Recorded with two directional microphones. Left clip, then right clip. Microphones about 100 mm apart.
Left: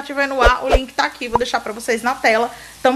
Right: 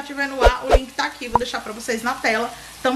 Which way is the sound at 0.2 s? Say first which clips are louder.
Left 3 dB; 25° left (ahead or behind).